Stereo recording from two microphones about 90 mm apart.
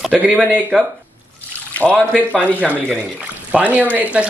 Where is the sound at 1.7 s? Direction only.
15° left (ahead or behind).